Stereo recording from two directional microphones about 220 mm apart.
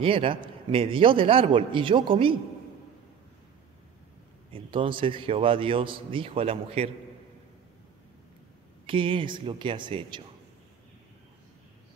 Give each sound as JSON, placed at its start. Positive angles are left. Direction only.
{"t": 0.0, "sound": "a man's voice", "side_deg": -25}
{"t": 4.5, "sound": "a man's voice", "side_deg": -25}
{"t": 8.8, "sound": "a man's voice", "side_deg": -25}